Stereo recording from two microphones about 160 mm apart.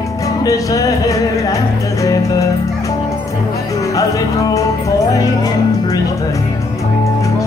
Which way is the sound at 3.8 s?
20° left (ahead or behind).